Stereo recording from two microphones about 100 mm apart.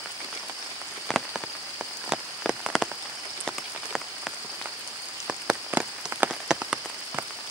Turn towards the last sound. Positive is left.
turn(degrees=-10)  # may be behind; listen again after turning